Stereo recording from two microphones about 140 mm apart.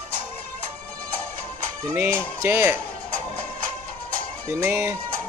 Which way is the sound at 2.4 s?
15° right (ahead or behind).